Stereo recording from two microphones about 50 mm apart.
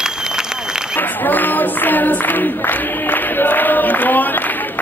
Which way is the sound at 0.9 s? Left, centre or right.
Left.